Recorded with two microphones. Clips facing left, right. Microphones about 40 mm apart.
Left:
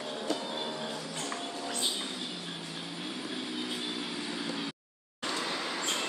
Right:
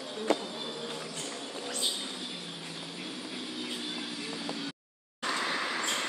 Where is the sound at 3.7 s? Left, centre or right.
Centre.